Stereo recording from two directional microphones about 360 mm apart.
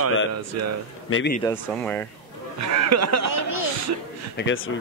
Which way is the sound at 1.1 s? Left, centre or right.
Left.